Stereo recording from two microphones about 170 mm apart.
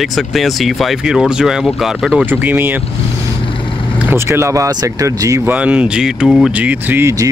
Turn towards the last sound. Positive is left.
turn(degrees=-15)  # may be behind; listen again after turning